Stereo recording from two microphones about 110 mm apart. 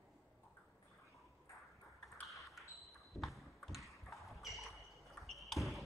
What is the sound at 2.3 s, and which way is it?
Ping, centre (ahead or behind).